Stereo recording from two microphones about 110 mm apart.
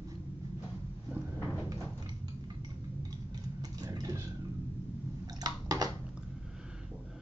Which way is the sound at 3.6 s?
35° right (ahead or behind).